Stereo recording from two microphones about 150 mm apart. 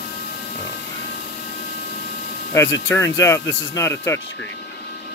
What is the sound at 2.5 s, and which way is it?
Speech, 15° left (ahead or behind).